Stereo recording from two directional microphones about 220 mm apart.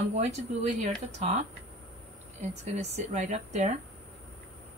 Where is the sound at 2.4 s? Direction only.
30° right (ahead or behind).